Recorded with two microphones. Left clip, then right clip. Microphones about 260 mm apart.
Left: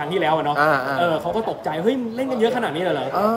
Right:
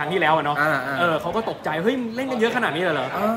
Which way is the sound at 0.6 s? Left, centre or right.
Centre.